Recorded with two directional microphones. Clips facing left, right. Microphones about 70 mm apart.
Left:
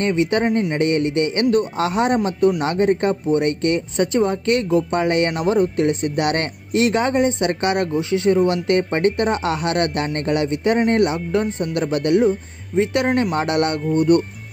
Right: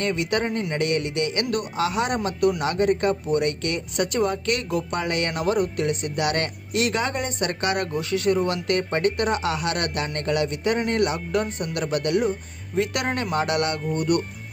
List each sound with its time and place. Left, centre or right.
0.0 s speech: left
2.1 s speech: left